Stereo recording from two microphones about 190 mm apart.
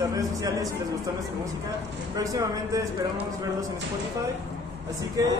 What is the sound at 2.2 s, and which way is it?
Speech, 15° right (ahead or behind).